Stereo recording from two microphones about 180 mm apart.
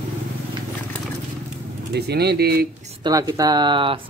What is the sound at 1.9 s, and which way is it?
Speech, 65° right (ahead or behind).